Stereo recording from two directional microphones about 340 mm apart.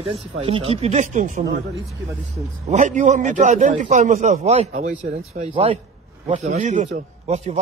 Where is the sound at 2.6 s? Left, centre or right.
Right.